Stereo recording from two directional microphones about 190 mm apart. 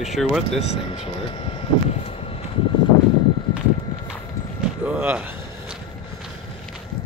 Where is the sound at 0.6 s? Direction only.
30° left (ahead or behind).